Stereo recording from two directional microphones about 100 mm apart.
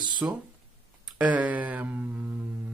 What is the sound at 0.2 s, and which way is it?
Speech, 15° right (ahead or behind).